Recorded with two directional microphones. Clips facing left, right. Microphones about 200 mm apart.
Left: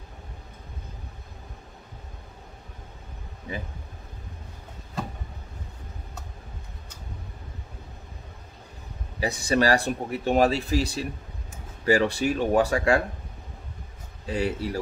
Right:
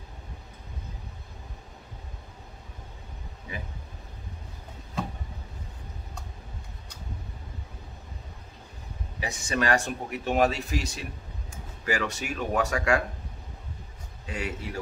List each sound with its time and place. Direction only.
9.2 s speech: 35° left (ahead or behind)
14.2 s speech: 35° left (ahead or behind)